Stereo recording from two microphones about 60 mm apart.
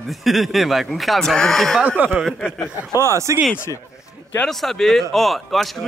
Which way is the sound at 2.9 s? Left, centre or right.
Right.